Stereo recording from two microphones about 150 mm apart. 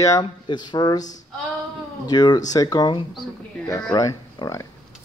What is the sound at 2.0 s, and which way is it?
Speech, 25° left (ahead or behind).